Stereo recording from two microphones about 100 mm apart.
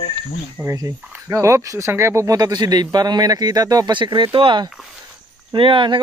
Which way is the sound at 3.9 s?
50° right (ahead or behind).